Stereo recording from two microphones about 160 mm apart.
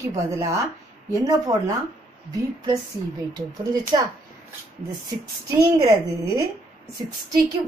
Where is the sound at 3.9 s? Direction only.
25° right (ahead or behind).